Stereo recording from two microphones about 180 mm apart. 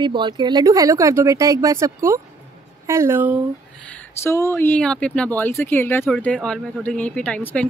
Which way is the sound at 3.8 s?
10° left (ahead or behind).